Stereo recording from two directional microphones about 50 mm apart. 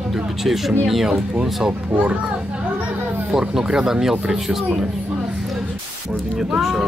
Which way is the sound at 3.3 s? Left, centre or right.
Centre.